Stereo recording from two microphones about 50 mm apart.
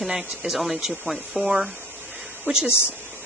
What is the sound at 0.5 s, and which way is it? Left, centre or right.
Speech, centre.